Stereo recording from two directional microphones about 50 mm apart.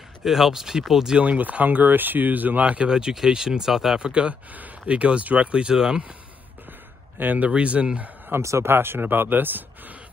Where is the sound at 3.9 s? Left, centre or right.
Right.